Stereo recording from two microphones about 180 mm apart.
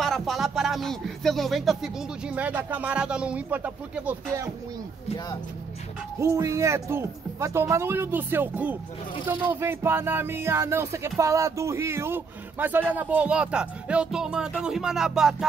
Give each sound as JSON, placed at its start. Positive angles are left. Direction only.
{"t": 0.0, "sound": "speech", "side_deg": 0}
{"t": 6.1, "sound": "music", "side_deg": -15}
{"t": 12.9, "sound": "speech", "side_deg": -10}